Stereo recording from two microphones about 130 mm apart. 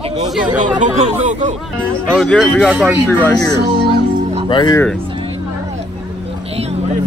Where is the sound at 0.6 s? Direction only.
65° right (ahead or behind).